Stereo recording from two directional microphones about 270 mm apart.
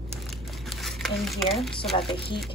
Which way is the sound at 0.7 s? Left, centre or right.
Centre.